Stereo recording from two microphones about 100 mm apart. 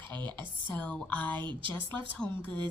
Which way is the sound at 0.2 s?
50° right (ahead or behind).